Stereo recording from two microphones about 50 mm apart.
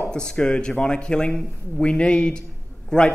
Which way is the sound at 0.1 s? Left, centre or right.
Centre.